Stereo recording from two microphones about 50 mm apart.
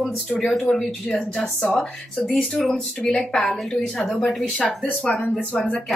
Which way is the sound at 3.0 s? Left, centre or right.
Left.